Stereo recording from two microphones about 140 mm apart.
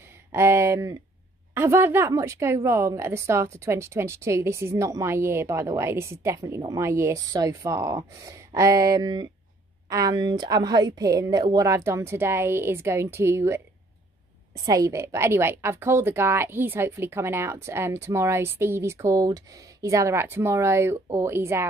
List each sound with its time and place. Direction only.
0.3 s speech: 20° right (ahead or behind)
14.6 s a woman's voice: 25° right (ahead or behind)